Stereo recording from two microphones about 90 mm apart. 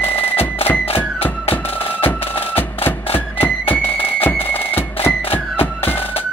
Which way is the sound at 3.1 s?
25° left (ahead or behind).